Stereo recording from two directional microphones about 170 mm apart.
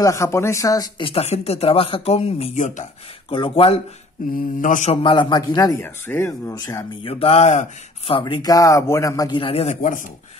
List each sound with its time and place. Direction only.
0.0 s speech: 15° left (ahead or behind); by 2.9 s 45° left (ahead or behind)
3.3 s speech: 30° left (ahead or behind)
4.4 s mantra: 50° left (ahead or behind)
5.0 s speech: 30° left (ahead or behind)
7.1 s speech: 35° left (ahead or behind)
8.1 s speech: 30° left (ahead or behind)
9.4 s speech: 35° left (ahead or behind)
9.8 s mantra: 50° left (ahead or behind)